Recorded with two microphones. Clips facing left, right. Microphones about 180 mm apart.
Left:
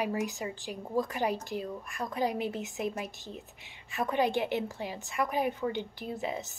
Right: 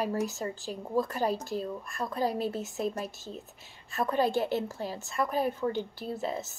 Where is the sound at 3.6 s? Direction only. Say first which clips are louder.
Right 1 dB; 40° right (ahead or behind).